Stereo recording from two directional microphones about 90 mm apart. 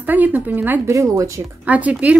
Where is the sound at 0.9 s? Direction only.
35° right (ahead or behind).